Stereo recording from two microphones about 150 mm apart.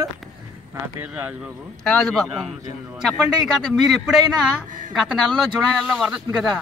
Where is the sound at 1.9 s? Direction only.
5° left (ahead or behind).